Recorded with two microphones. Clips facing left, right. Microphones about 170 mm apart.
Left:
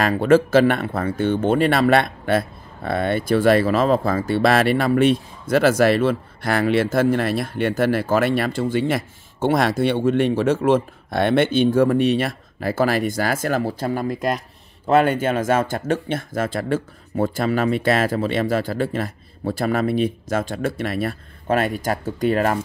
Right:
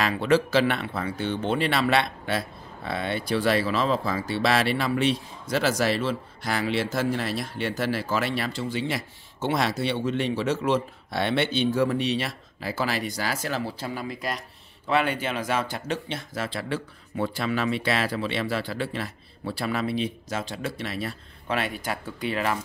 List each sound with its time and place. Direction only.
0.0 s speech: 45° left (ahead or behind)